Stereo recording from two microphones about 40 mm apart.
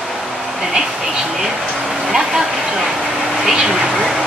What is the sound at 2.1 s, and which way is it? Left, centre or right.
Vehicle, centre.